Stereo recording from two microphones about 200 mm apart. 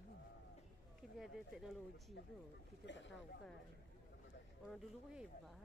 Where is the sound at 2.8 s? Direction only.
65° left (ahead or behind).